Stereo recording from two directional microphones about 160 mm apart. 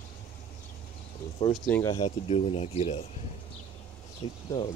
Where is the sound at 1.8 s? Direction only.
35° left (ahead or behind).